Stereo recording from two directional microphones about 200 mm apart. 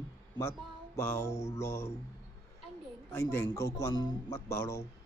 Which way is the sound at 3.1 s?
15° left (ahead or behind).